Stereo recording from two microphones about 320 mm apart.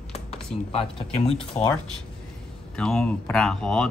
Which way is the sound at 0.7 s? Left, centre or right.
Centre.